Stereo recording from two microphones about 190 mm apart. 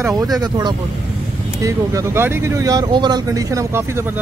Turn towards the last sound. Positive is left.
turn(degrees=-15)  # may be behind; listen again after turning